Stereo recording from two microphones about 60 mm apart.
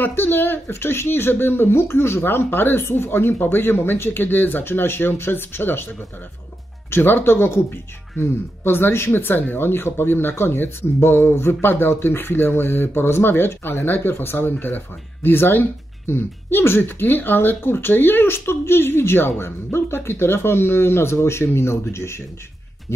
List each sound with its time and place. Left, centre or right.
0.0 s speech: left